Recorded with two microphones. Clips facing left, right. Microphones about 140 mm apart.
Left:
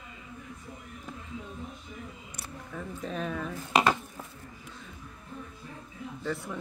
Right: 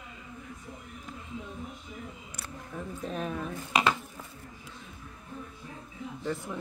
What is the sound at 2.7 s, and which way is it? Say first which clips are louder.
Speech: even; 10° right (ahead or behind).